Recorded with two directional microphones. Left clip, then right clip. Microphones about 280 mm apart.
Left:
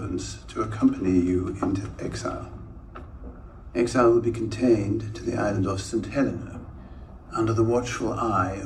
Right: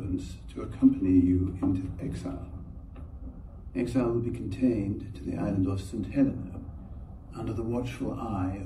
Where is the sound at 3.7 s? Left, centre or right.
Centre.